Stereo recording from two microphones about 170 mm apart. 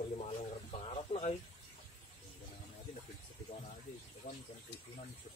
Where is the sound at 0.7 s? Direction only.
35° left (ahead or behind).